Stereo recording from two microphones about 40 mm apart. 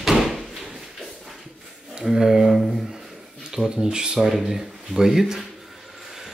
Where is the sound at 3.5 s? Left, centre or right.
Centre.